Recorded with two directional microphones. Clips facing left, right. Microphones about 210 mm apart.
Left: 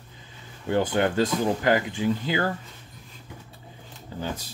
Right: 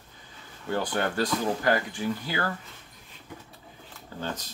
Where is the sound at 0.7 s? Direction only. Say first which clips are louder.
Left 5 dB; 20° left (ahead or behind).